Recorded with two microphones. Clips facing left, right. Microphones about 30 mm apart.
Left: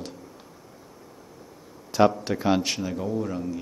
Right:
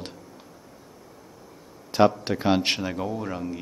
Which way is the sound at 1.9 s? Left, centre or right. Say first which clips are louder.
Even; right.